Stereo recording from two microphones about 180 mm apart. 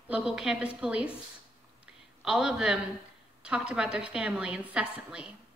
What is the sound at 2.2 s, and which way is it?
A woman's voice, 5° right (ahead or behind).